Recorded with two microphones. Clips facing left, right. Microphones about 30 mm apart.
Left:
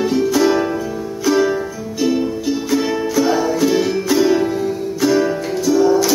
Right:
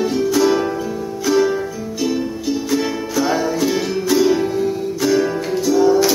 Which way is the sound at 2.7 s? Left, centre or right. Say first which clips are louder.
Left 2 dB; centre.